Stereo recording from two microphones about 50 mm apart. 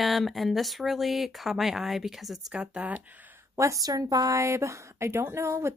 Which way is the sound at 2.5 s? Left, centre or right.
Right.